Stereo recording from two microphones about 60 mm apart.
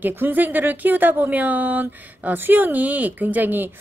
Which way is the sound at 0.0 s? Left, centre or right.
Right.